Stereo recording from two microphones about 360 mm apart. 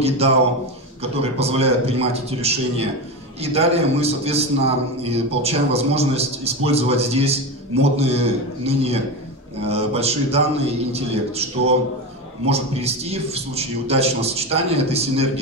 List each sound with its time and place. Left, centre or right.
1.2 s a man's voice: centre